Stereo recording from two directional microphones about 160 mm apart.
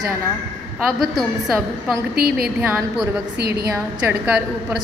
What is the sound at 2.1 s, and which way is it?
Speech, 75° right (ahead or behind).